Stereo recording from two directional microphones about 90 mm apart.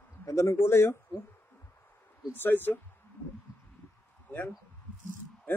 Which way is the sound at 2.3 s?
25° left (ahead or behind).